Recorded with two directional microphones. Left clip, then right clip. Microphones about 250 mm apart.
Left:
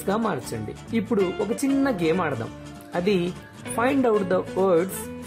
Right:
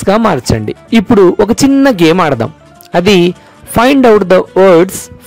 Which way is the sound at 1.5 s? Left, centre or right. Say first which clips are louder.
Right 16 dB; right.